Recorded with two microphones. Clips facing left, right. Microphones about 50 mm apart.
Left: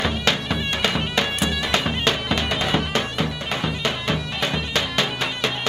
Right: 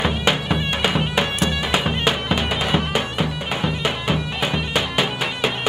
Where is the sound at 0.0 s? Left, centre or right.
Centre.